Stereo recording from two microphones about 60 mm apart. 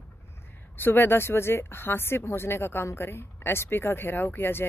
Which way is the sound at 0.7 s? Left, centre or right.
Left.